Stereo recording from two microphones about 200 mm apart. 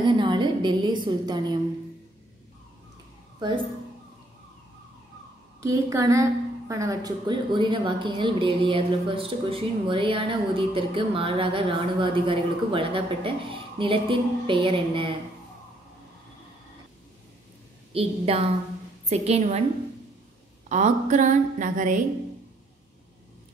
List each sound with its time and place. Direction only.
0.0 s a woman's voice: 25° right (ahead or behind)
5.6 s a woman's voice: 15° right (ahead or behind)
17.9 s a woman's voice: 30° right (ahead or behind)
20.6 s a woman's voice: 35° right (ahead or behind)